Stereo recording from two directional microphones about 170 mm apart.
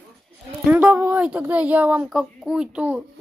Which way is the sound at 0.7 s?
10° right (ahead or behind).